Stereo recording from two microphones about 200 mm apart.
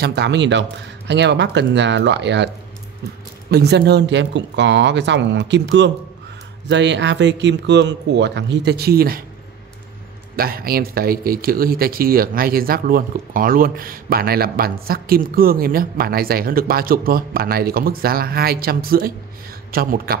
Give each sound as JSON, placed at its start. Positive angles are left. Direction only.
{"t": 0.0, "sound": "speech", "side_deg": -55}
{"t": 10.3, "sound": "speech", "side_deg": -50}